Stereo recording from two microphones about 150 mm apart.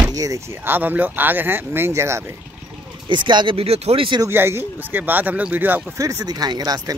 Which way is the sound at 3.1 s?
30° right (ahead or behind).